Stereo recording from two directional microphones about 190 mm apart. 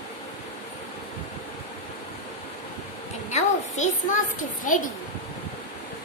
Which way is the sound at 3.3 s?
40° left (ahead or behind).